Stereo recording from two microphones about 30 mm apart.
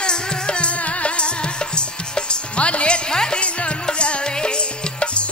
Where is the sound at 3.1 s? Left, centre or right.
Left.